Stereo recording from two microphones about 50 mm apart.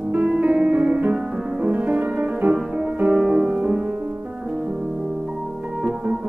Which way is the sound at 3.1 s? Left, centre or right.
Centre.